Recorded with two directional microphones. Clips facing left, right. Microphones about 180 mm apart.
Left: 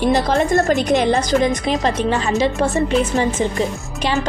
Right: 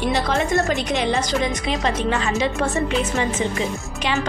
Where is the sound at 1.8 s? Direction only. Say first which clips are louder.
Left 3 dB; 35° left (ahead or behind).